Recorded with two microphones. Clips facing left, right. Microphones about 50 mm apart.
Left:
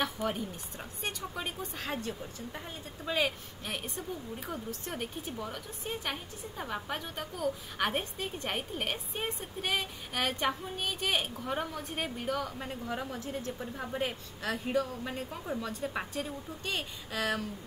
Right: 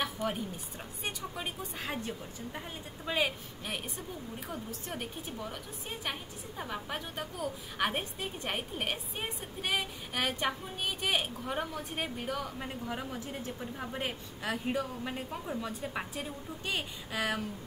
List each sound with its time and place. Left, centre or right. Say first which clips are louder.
0.0 s a sound: left 1 dB; centre
1.0 s a woman's voice: left 1 dB; centre
2.0 s a woman's voice: left 1 dB; centre
13.2 s a woman's voice: left 2 dB; centre
13.6 s a woman's voice: left 2 dB; centre